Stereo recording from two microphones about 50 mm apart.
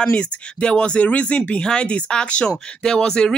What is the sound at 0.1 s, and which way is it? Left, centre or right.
Speech, centre.